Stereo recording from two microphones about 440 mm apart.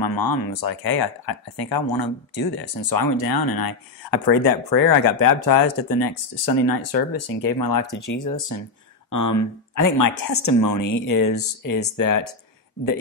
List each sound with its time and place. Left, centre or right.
0.0 s speech: left